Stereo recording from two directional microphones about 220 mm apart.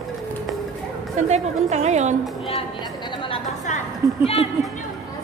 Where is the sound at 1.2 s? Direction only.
30° right (ahead or behind).